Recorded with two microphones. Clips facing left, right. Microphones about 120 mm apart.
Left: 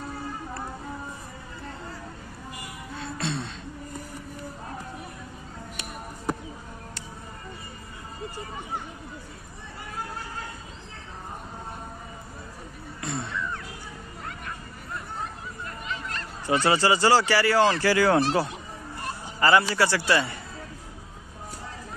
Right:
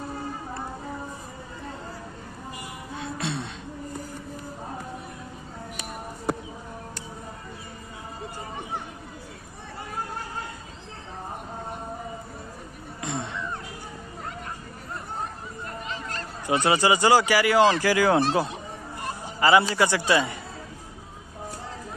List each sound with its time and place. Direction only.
3.0 s music: 15° right (ahead or behind)
13.0 s a sound: 20° right (ahead or behind)
15.6 s music: 35° right (ahead or behind)
16.4 s a man's voice: 15° right (ahead or behind)